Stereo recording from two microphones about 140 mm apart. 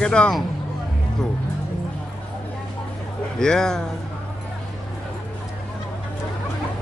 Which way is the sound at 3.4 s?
5° left (ahead or behind).